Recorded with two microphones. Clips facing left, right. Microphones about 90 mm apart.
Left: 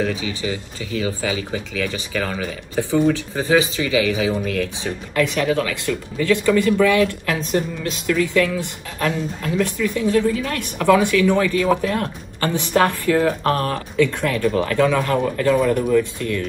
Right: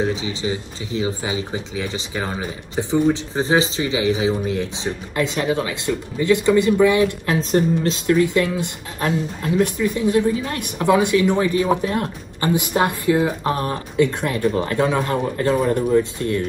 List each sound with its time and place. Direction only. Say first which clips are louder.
0.0 s speech: right 1 dB; 20° right (ahead or behind)
12.4 s speech: left 1 dB; 10° right (ahead or behind)